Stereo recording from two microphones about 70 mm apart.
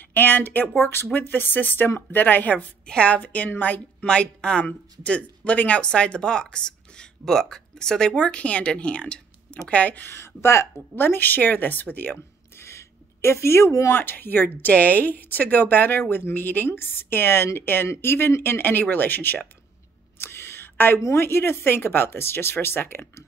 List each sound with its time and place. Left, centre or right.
0.0 s a woman's voice: left
4.1 s a woman's voice: centre
10.1 s speech: left
13.9 s a woman's voice: left
20.2 s a sound: left
21.0 s speech: left